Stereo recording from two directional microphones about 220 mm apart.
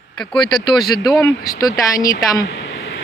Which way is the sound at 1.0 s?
15° left (ahead or behind).